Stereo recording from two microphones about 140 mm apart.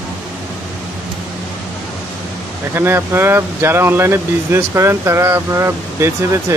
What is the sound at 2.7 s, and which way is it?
Speech, 15° right (ahead or behind).